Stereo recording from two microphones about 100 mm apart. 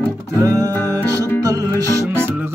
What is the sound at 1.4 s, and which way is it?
Music, 35° right (ahead or behind).